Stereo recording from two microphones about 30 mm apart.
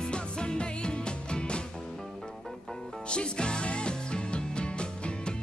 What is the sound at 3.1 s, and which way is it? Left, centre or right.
Music, left.